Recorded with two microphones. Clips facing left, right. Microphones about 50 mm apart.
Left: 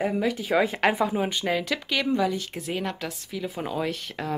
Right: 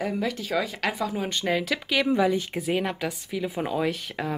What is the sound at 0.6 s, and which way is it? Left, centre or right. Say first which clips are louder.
Speech: left 6 dB; left.